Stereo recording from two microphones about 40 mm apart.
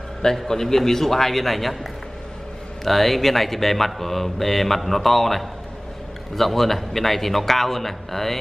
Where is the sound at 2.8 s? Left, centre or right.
Centre.